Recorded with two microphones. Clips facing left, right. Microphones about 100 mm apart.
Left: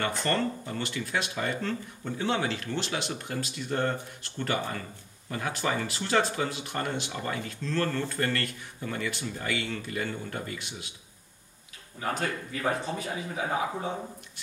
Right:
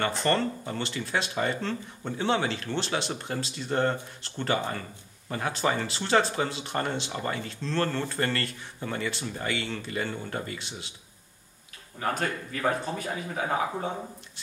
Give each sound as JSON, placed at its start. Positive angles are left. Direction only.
{"t": 0.0, "sound": "speech", "side_deg": -35}
{"t": 12.0, "sound": "speech", "side_deg": -45}
{"t": 12.6, "sound": "speech", "side_deg": 15}